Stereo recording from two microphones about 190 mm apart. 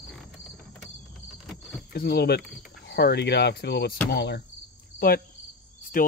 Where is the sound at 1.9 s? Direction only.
55° left (ahead or behind).